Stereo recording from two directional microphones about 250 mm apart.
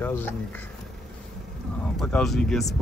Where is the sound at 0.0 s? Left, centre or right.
Centre.